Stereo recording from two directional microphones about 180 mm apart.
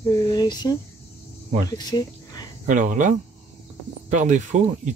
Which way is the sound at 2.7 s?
45° right (ahead or behind).